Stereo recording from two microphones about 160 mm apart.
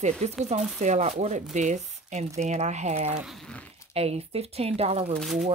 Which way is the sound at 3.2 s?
Centre (ahead or behind).